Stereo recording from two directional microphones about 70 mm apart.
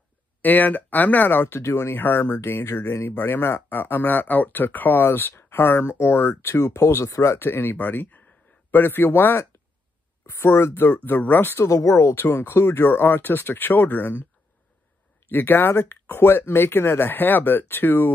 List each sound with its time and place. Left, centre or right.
0.4 s speech: left
7.3 s speech: left
11.1 s speech: left
11.5 s speech: left
15.2 s speech: left